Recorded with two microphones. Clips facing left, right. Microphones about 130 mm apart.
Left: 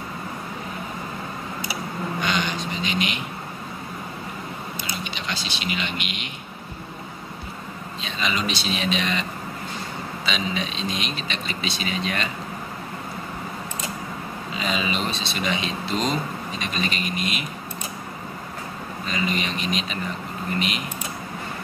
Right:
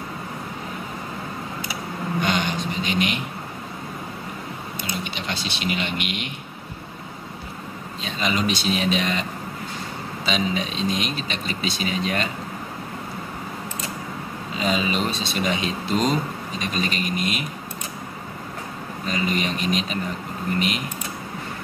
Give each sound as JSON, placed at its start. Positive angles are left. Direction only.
{"t": 2.2, "sound": "vehicle", "side_deg": -50}
{"t": 5.1, "sound": "speech", "side_deg": -55}
{"t": 8.0, "sound": "a man's voice", "side_deg": -45}
{"t": 10.2, "sound": "a man's voice", "side_deg": -45}
{"t": 14.6, "sound": "a man's voice", "side_deg": -40}
{"t": 19.0, "sound": "a man's voice", "side_deg": -45}